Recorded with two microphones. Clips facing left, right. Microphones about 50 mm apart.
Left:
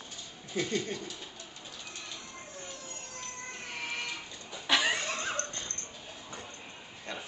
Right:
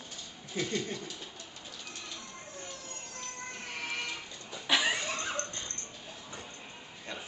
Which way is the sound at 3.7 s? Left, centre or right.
Centre.